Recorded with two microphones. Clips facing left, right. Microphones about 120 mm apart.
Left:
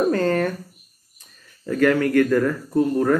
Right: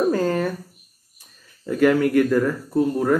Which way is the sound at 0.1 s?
5° right (ahead or behind).